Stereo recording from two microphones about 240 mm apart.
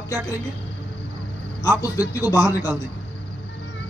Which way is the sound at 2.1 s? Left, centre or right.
Centre.